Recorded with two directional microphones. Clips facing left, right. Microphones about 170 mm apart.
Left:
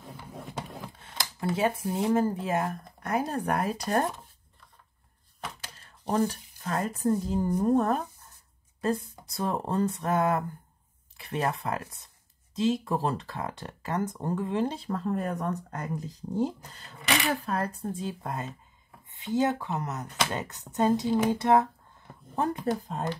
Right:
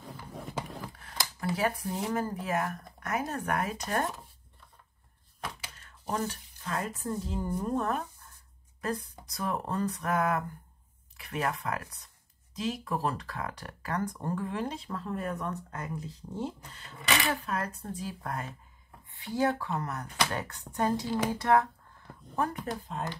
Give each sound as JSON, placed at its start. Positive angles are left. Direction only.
{"t": 0.3, "sound": "a sound", "side_deg": 0}
{"t": 0.9, "sound": "speech", "side_deg": 25}
{"t": 5.7, "sound": "speech", "side_deg": 35}